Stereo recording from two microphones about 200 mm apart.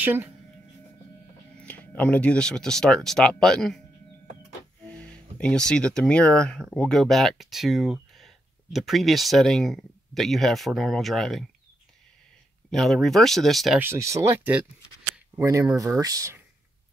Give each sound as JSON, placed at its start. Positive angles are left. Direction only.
{"t": 0.0, "sound": "speech", "side_deg": -10}
{"t": 1.6, "sound": "speech", "side_deg": 5}
{"t": 4.8, "sound": "speech", "side_deg": 5}
{"t": 12.7, "sound": "speech", "side_deg": 0}
{"t": 13.7, "sound": "speech", "side_deg": -10}